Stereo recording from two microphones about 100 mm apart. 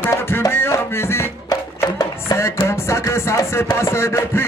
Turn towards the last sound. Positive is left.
turn(degrees=25)  # may be behind; listen again after turning